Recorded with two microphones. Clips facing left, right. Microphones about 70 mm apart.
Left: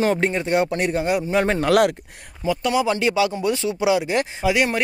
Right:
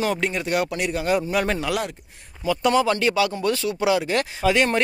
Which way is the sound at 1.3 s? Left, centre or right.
Left.